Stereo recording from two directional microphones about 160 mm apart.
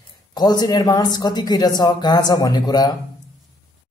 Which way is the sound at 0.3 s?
25° left (ahead or behind).